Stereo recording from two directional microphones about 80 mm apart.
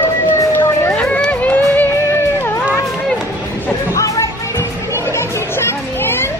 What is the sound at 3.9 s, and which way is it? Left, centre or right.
Music, left.